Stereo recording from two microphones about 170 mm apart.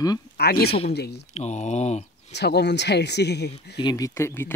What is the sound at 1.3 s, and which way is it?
Speech, 40° left (ahead or behind).